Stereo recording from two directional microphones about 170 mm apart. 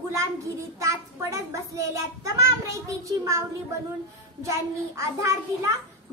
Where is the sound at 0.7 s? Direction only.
20° right (ahead or behind).